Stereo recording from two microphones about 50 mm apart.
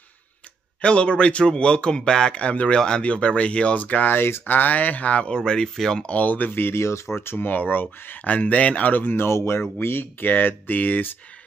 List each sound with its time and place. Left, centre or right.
0.7 s a man's voice: left
3.8 s speech: left
4.2 s speech: left
4.6 s a man's voice: left; by 6.0 s centre
6.0 s speech: left
6.5 s speech: left
7.2 s speech: left
9.0 s speech: left